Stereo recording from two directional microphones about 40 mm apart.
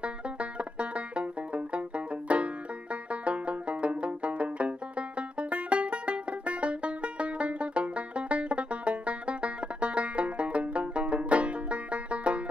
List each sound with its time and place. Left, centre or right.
0.0 s banjo: right